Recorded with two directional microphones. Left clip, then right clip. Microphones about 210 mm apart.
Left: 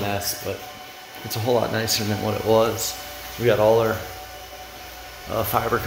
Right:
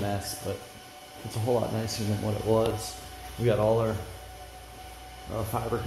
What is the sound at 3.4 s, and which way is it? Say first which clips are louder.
Speech: left 7 dB; 5° left (ahead or behind).